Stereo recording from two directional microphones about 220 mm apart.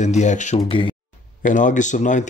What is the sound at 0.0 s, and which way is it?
Speech, 30° left (ahead or behind).